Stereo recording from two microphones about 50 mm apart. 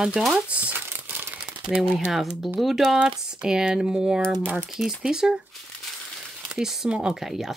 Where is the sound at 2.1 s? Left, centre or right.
Centre.